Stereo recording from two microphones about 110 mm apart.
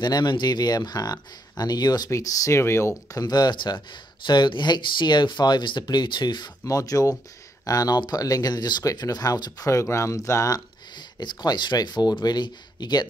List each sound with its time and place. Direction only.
0.0 s speech: 40° left (ahead or behind); by 2.9 s 25° left (ahead or behind)
3.1 s speech: 35° left (ahead or behind)
6.6 s speech: 30° left (ahead or behind)